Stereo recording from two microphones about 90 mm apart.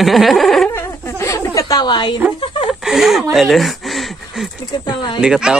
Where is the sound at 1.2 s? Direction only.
35° left (ahead or behind).